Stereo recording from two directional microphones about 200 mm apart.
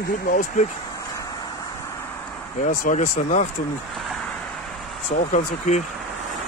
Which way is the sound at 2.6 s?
40° left (ahead or behind).